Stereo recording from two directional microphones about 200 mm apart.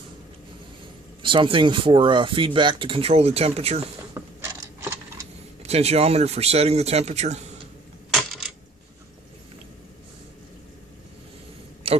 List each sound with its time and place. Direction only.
1.2 s speech: 25° right (ahead or behind)
4.2 s mechanisms: 15° right (ahead or behind)
5.6 s speech: 30° right (ahead or behind)
8.1 s coin: centre (ahead or behind)
11.8 s a sound: 30° right (ahead or behind)